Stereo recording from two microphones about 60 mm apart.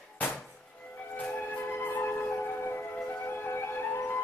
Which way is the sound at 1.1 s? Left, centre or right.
Left.